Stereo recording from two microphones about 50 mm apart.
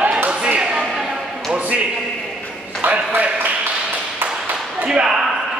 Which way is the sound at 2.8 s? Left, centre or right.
Right.